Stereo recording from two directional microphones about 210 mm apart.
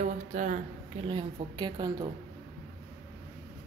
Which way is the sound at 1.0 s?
25° right (ahead or behind).